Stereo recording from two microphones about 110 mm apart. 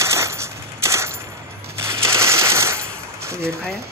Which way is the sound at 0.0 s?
25° right (ahead or behind).